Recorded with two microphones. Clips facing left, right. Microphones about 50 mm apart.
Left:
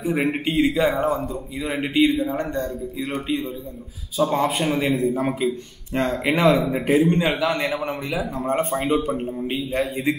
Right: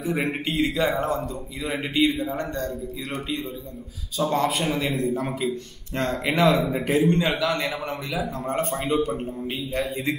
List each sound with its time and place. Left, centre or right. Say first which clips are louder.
0.0 s a man's voice: left 4 dB; centre
4.2 s a man's voice: left 2 dB; centre
5.1 s a man's voice: left 4 dB; centre
5.9 s a man's voice: left 2 dB; centre